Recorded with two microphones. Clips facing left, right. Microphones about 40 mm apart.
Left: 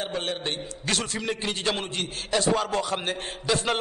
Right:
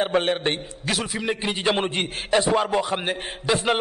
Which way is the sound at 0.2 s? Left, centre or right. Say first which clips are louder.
Right 7 dB; right.